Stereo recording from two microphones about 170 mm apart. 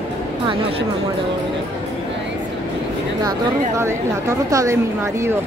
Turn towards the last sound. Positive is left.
turn(degrees=-15)  # may be behind; listen again after turning